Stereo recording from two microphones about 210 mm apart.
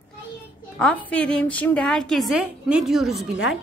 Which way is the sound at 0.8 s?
5° left (ahead or behind).